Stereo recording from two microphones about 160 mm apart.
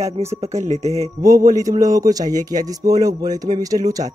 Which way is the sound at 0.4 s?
45° right (ahead or behind).